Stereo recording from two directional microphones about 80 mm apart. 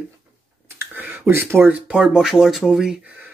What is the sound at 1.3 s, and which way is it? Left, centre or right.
Speech, right.